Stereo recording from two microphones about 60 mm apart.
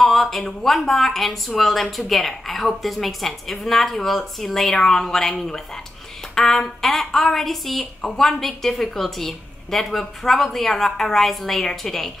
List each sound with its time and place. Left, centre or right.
0.0 s a woman's voice: centre